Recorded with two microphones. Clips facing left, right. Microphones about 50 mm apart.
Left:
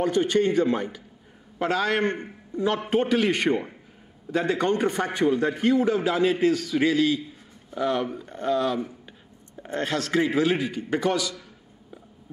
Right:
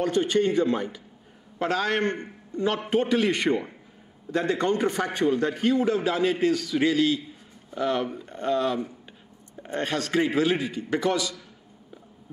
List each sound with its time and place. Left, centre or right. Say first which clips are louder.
0.1 s a man's voice: left 1 dB; left
1.6 s a man's voice: left 1 dB; centre
2.8 s a man's voice: even; centre
4.3 s a man's voice: left 1 dB; centre; by 5.8 s left
5.8 s a man's voice: left 1 dB; centre
10.9 s a man's voice: even; centre